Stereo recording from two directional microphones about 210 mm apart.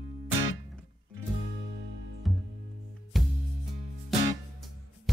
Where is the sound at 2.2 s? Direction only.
Centre (ahead or behind).